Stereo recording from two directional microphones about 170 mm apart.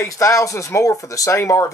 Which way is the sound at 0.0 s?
15° left (ahead or behind).